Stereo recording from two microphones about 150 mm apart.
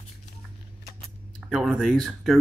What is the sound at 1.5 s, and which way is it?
Speech, centre (ahead or behind).